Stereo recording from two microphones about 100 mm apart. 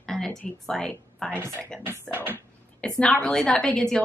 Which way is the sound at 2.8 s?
5° left (ahead or behind).